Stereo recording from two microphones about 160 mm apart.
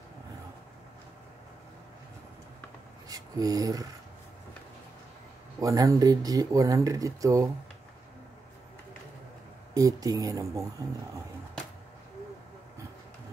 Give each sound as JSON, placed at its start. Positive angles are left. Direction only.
{"t": 3.1, "sound": "speech", "side_deg": -25}
{"t": 5.6, "sound": "speech", "side_deg": -20}
{"t": 9.8, "sound": "speech", "side_deg": -20}